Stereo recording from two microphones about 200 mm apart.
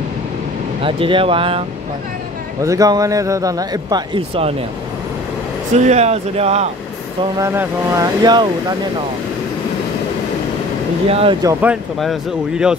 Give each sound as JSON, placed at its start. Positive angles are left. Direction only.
{"t": 0.8, "sound": "speech", "side_deg": -25}
{"t": 2.6, "sound": "speech", "side_deg": -15}
{"t": 5.9, "sound": "speech", "side_deg": -35}
{"t": 7.3, "sound": "speech", "side_deg": -15}
{"t": 11.1, "sound": "speech", "side_deg": -30}
{"t": 11.4, "sound": "speech", "side_deg": -5}